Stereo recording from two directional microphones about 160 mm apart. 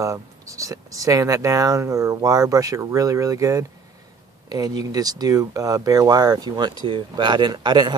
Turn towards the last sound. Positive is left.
turn(degrees=-25)  # may be behind; listen again after turning